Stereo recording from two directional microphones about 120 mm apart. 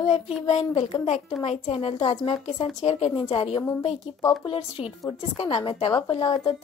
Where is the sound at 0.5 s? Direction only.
60° left (ahead or behind).